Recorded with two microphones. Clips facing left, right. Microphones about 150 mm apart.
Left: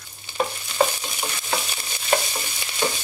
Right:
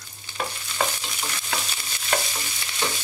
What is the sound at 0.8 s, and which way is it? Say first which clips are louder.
Stir: left 6 dB; 25° left (ahead or behind).